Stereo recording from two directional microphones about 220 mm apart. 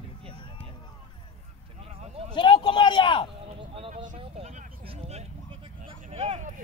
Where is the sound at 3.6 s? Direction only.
25° right (ahead or behind).